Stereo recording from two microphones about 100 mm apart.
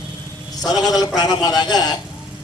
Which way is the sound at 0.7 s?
40° left (ahead or behind).